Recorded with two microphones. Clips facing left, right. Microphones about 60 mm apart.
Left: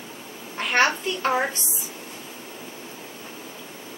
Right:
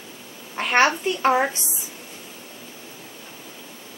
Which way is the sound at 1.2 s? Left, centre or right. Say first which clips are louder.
Right 4 dB; centre.